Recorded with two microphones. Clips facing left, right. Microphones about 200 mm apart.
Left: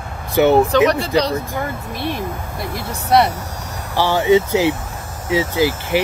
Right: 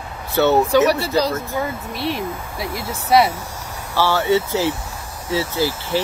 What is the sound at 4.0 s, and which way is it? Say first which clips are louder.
Speech: left 3 dB; 15° left (ahead or behind).